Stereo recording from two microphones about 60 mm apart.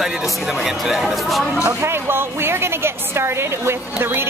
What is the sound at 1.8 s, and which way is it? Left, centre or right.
A woman's voice, right.